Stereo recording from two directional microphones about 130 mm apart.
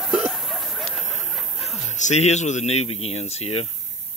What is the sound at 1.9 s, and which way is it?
Speech, 65° left (ahead or behind).